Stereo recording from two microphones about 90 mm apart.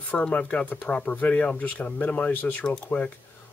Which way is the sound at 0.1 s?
15° left (ahead or behind).